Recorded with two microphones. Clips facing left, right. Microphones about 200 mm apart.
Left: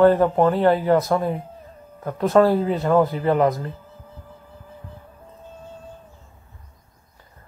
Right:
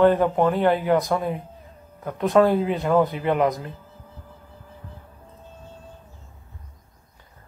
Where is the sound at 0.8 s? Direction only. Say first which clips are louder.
Left 2 dB; 15° right (ahead or behind).